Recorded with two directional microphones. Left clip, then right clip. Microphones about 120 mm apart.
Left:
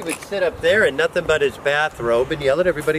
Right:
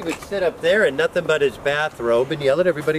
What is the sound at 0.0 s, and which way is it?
Speech, centre (ahead or behind).